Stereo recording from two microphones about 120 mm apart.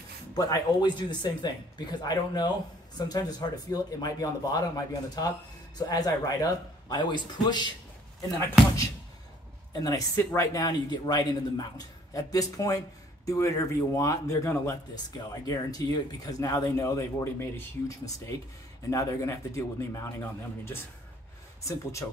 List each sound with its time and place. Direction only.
0.4 s speech: 35° left (ahead or behind)
9.7 s speech: 30° left (ahead or behind)